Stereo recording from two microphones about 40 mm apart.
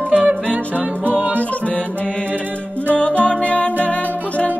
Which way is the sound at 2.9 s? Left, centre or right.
Left.